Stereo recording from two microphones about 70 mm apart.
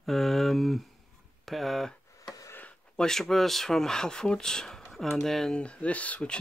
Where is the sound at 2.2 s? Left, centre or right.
Left.